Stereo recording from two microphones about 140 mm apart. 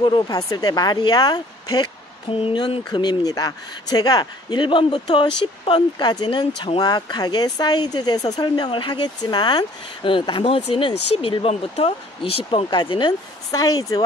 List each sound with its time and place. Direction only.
0.0 s speech: 30° left (ahead or behind)